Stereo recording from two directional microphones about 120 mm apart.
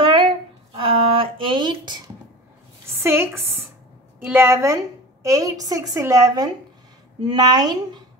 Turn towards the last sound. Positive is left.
turn(degrees=-35)  # may be behind; listen again after turning